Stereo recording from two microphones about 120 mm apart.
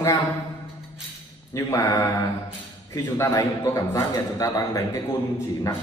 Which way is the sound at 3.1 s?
20° left (ahead or behind).